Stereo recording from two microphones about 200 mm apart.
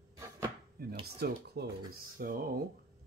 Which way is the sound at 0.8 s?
50° right (ahead or behind).